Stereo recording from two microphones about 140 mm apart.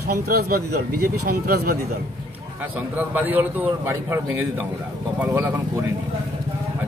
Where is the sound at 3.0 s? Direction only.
10° right (ahead or behind).